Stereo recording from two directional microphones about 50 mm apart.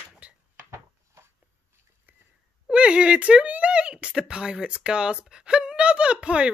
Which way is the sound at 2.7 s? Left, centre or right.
Right.